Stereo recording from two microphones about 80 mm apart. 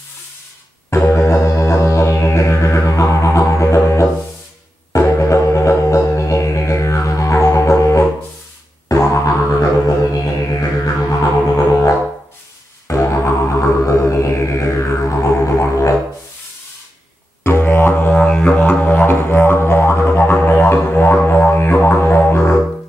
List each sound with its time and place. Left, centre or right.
0.8 s music: left
11.1 s music: left
17.4 s music: left
18.1 s music: centre
18.6 s music: left